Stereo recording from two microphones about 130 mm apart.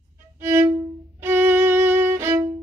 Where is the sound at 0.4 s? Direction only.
15° right (ahead or behind).